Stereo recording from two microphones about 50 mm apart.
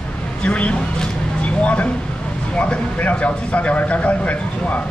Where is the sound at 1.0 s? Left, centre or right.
Left.